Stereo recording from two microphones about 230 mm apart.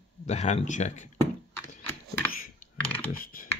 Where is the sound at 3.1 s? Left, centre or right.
Left.